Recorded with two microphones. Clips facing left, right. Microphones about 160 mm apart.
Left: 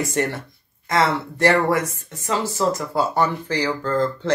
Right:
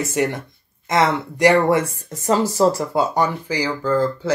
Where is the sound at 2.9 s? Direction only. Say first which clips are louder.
Right 1 dB; 15° right (ahead or behind).